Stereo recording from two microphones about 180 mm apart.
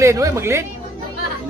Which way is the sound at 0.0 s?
15° right (ahead or behind).